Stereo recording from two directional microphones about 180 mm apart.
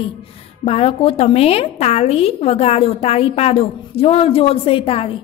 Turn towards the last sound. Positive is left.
turn(degrees=30)  # may be behind; listen again after turning